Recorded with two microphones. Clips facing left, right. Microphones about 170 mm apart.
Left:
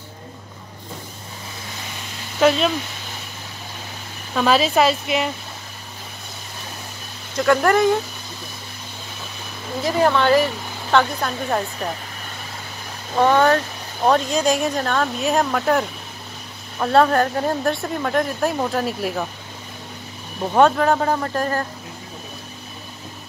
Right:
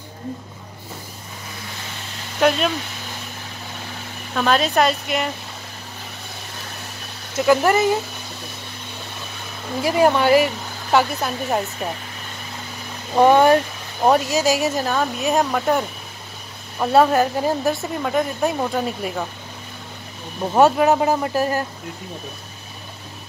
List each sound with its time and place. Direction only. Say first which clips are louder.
4.4 s speech: left 1 dB; centre (ahead or behind)
7.3 s speech: even; 5° right (ahead or behind)
9.8 s speech: right 1 dB; 10° right (ahead or behind)
13.1 s speech: right 3 dB; 15° right (ahead or behind)
16.8 s speech: right 1 dB; 10° right (ahead or behind)
20.5 s speech: right 1 dB; 10° right (ahead or behind)